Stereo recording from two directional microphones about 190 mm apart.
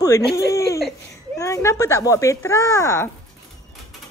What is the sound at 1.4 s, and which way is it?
Speech, 15° left (ahead or behind).